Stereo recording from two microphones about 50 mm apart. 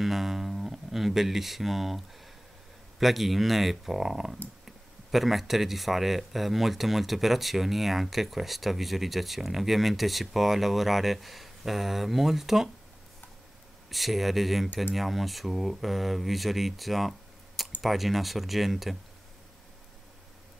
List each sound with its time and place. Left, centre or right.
0.0 s a sound: centre
3.0 s speech: centre
13.8 s speech: centre